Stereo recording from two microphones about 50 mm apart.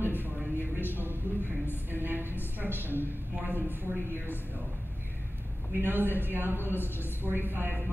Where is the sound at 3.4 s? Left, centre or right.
Right.